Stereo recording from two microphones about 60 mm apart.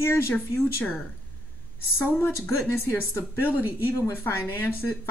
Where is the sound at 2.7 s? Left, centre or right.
Left.